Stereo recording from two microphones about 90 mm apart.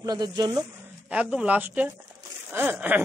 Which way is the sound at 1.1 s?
15° right (ahead or behind).